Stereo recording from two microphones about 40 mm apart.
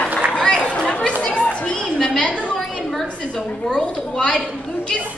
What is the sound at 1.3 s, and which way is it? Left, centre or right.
Children playing, left.